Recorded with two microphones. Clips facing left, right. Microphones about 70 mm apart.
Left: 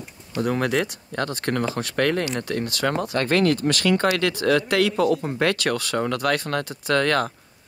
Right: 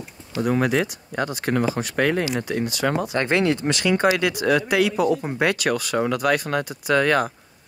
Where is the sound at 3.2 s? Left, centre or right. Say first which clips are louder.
Left 1 dB; centre.